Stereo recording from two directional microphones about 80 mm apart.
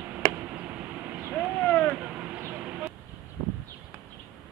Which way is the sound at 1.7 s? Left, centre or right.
Centre.